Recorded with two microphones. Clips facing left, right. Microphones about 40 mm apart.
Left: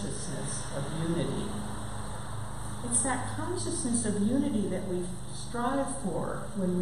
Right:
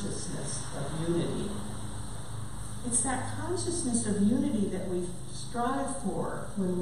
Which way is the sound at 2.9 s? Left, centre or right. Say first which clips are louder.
Left 1 dB; centre.